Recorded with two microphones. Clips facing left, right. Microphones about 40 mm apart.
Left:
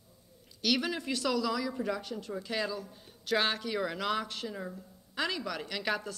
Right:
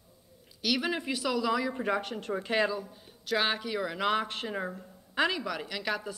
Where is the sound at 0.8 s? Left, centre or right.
Centre.